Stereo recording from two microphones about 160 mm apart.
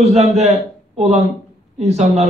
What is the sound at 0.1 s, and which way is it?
A man's voice, 45° right (ahead or behind).